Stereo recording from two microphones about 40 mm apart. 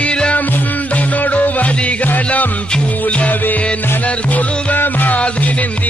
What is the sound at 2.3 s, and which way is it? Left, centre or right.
Music, left.